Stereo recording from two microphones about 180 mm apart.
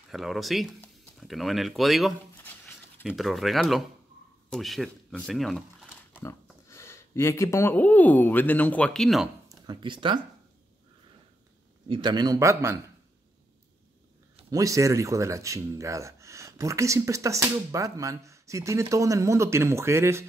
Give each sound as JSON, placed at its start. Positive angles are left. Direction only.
{"t": 0.1, "sound": "speech", "side_deg": 0}
{"t": 6.2, "sound": "speech", "side_deg": 15}
{"t": 9.5, "sound": "speech", "side_deg": -25}
{"t": 11.9, "sound": "a man's voice", "side_deg": -25}
{"t": 14.5, "sound": "speech", "side_deg": -20}